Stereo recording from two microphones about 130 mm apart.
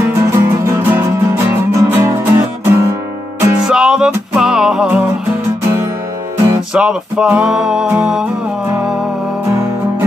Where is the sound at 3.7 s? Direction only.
5° right (ahead or behind).